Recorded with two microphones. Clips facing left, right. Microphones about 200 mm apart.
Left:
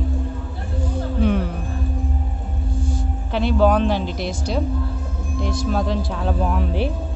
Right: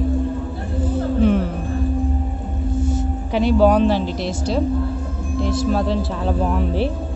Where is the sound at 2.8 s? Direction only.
25° right (ahead or behind).